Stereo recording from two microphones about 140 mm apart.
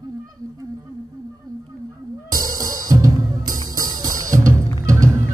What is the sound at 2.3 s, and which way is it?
Music, 25° right (ahead or behind).